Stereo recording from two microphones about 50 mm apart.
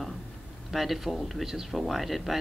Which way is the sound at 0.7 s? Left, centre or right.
Centre.